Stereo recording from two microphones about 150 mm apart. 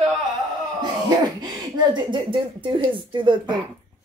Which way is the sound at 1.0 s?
25° right (ahead or behind).